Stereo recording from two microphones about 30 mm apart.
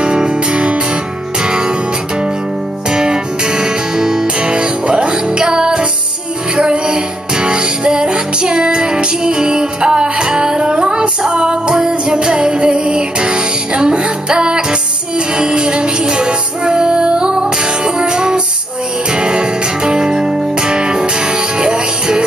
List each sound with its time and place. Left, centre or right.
0.0 s music: right
2.9 s music: right
4.4 s music: right
5.4 s music: right